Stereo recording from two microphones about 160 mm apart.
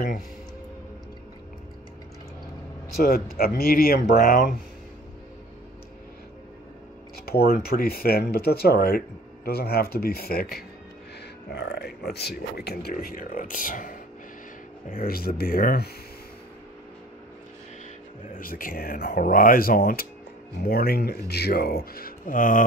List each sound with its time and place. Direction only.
3.0 s speech: 70° left (ahead or behind)
7.2 s speech: 75° left (ahead or behind)
11.5 s speech: 90° left
12.9 s speech: 60° left (ahead or behind)
18.3 s speech: 60° left (ahead or behind)